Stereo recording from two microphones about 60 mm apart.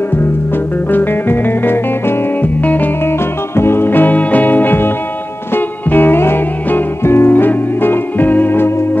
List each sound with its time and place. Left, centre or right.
0.9 s music: left
3.1 s music: left